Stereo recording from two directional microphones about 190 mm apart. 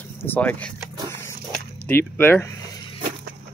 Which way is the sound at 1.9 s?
10° left (ahead or behind).